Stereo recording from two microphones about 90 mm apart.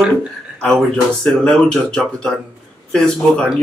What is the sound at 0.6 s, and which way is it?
A man's voice, 5° left (ahead or behind).